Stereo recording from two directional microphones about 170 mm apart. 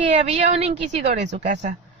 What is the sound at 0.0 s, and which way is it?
A woman's voice, 40° right (ahead or behind).